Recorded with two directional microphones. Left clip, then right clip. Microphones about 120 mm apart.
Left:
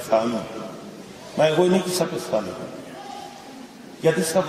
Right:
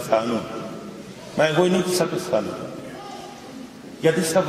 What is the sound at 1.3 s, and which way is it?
A man's voice, 15° left (ahead or behind).